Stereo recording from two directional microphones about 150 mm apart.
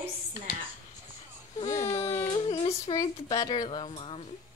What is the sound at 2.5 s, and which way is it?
Music, 40° left (ahead or behind).